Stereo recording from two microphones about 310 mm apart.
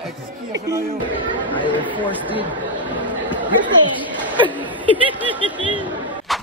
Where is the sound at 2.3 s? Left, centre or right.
Centre.